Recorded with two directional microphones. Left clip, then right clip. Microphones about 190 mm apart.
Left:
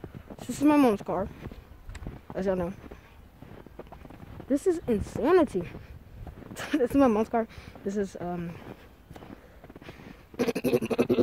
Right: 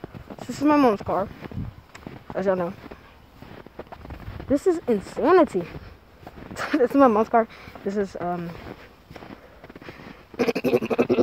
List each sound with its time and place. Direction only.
0.5 s speech: 15° left (ahead or behind)
2.3 s speech: 10° left (ahead or behind)
4.5 s speech: centre (ahead or behind)
10.3 s dog: 5° left (ahead or behind)